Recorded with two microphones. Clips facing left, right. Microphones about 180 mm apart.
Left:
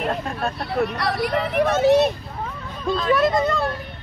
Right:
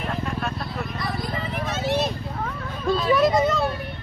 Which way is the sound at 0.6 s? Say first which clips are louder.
Left 7 dB; 70° left (ahead or behind).